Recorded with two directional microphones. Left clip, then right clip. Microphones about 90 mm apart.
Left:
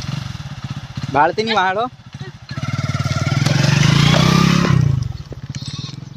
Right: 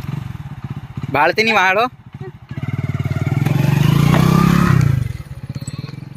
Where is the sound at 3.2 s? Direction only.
Centre (ahead or behind).